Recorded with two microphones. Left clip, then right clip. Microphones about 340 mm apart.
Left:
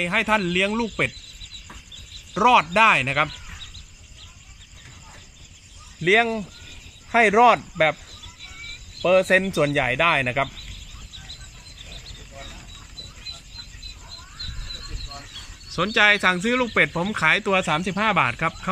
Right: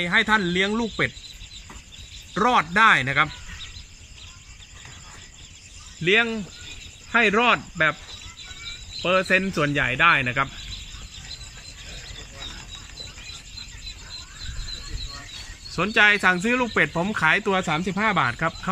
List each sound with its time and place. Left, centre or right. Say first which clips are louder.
0.0 s speech: right 1 dB; centre
2.3 s speech: left 3 dB; centre
6.0 s speech: left 2 dB; centre
9.0 s speech: left 3 dB; centre
15.7 s speech: even; centre